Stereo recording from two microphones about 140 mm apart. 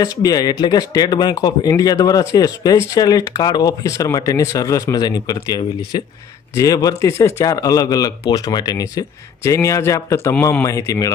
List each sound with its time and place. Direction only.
0.0 s speech: 30° left (ahead or behind)